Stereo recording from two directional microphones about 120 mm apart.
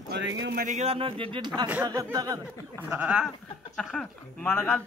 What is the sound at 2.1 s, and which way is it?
Speech, 30° right (ahead or behind).